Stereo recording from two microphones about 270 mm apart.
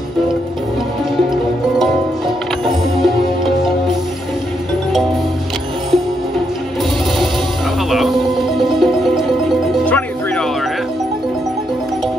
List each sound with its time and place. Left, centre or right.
3.0 s music: centre
7.9 s music: centre